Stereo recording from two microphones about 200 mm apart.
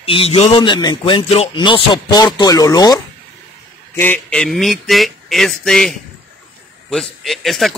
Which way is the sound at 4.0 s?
10° left (ahead or behind).